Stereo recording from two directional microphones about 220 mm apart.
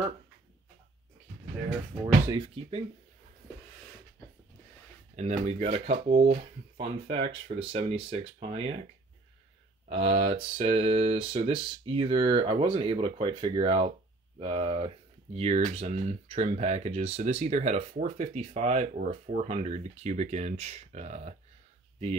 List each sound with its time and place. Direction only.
2.2 s speech: 20° right (ahead or behind)
5.1 s speech: 30° right (ahead or behind)
9.8 s speech: 25° right (ahead or behind)